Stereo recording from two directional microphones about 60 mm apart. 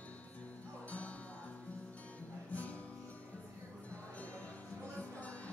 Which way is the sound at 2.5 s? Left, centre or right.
Left.